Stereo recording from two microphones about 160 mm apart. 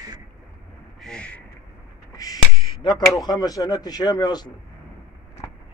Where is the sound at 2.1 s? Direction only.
25° left (ahead or behind).